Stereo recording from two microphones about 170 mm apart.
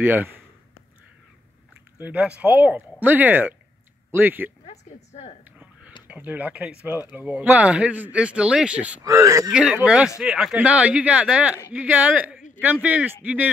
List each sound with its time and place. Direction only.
0.0 s speech: 10° right (ahead or behind)
2.0 s speech: 10° right (ahead or behind)
4.6 s a sound: 40° left (ahead or behind)
5.4 s a sound: 10° right (ahead or behind)
6.0 s speech: 10° right (ahead or behind)
9.0 s speech: 20° right (ahead or behind)
9.5 s speech: 5° right (ahead or behind)